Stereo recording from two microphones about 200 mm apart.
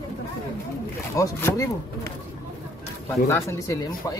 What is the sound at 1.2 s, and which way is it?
Speech, 15° left (ahead or behind).